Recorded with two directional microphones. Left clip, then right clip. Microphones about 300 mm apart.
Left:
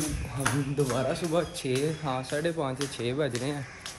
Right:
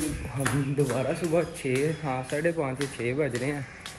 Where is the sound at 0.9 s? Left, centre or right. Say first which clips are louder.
Right 1 dB; centre.